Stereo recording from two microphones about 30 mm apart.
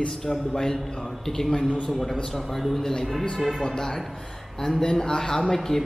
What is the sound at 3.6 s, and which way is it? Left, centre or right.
A man's voice, centre.